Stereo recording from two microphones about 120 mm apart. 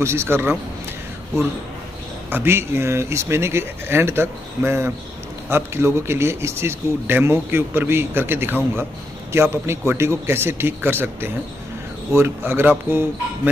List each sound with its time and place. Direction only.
0.0 s a man's voice: 20° right (ahead or behind)
2.2 s a man's voice: 20° right (ahead or behind)